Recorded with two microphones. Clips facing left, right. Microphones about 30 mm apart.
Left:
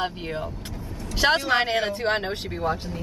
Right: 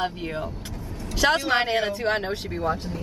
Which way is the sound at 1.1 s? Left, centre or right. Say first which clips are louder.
Even; centre.